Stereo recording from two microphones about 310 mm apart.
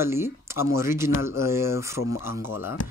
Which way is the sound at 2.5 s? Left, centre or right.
Left.